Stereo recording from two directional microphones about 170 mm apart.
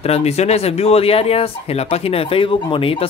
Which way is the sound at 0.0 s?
40° left (ahead or behind).